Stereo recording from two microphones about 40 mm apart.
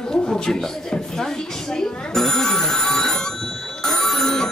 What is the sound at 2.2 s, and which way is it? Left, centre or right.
Telephone bell ringing, centre.